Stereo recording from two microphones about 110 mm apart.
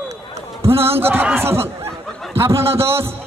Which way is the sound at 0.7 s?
60° right (ahead or behind).